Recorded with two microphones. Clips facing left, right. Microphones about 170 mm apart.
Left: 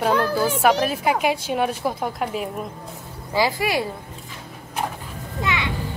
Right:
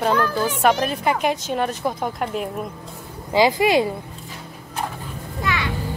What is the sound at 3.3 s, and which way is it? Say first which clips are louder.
Speech: right 5 dB; 20° right (ahead or behind).